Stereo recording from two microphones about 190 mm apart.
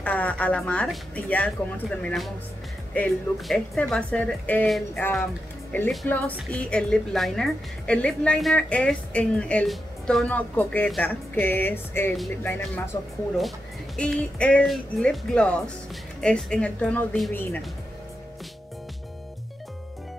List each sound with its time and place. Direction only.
0.0 s a woman's voice: 10° left (ahead or behind)
13.9 s a woman's voice: 5° left (ahead or behind)